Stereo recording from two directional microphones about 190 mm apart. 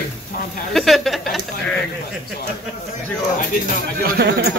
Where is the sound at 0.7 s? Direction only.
Centre (ahead or behind).